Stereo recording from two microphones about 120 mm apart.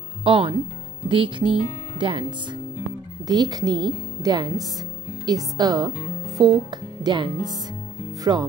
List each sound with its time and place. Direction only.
0.2 s speech: 45° right (ahead or behind)
3.3 s speech: 35° right (ahead or behind)